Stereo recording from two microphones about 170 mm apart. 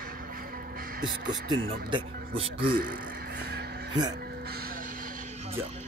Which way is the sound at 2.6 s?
60° right (ahead or behind).